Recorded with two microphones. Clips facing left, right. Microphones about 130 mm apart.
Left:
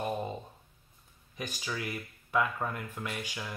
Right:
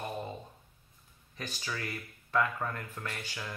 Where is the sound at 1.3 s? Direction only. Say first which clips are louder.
Left 2 dB; 10° left (ahead or behind).